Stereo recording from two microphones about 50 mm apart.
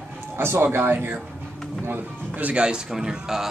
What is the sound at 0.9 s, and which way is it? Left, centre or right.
Speech, right.